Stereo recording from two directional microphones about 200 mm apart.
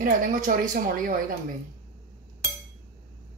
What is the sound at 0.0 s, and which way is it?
A woman's voice, 40° right (ahead or behind).